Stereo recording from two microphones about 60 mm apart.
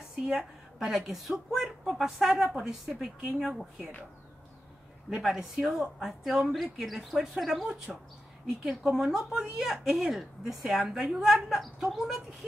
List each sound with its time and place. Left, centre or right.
0.1 s a woman's voice: centre
5.2 s a woman's voice: centre
10.4 s a woman's voice: centre